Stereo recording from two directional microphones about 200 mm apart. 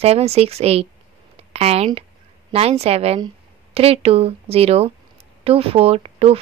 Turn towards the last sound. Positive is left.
turn(degrees=-30)  # may be behind; listen again after turning